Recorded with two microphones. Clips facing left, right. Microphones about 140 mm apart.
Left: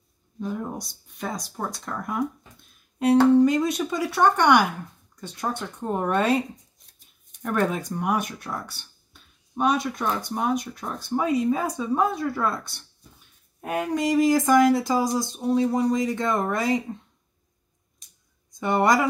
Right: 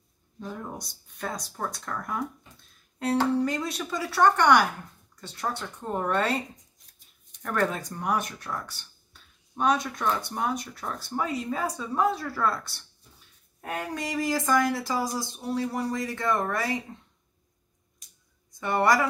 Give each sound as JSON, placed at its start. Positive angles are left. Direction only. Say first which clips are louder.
{"t": 0.4, "sound": "speech", "louder": "left 6 dB", "side_deg": 10}
{"t": 3.4, "sound": "speech", "louder": "left 8 dB", "side_deg": 15}
{"t": 7.4, "sound": "speech", "louder": "left 3 dB", "side_deg": 15}
{"t": 9.6, "sound": "speech", "louder": "left 2 dB", "side_deg": 15}
{"t": 18.6, "sound": "speech", "louder": "left 3 dB", "side_deg": 20}